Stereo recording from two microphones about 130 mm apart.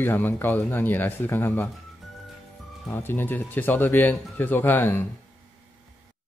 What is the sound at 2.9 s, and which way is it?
Speech, 15° left (ahead or behind).